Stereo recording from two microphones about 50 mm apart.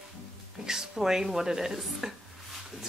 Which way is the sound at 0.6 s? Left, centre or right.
Centre.